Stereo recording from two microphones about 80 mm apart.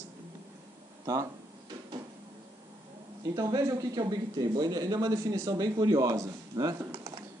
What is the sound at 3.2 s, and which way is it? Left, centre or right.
Speech, right.